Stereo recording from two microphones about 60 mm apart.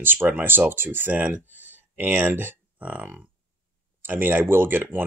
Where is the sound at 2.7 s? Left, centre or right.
Right.